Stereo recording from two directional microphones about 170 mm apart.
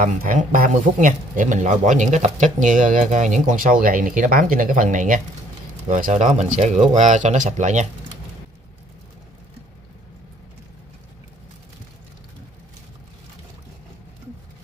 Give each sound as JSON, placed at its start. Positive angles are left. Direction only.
{"t": 0.0, "sound": "speech", "side_deg": -50}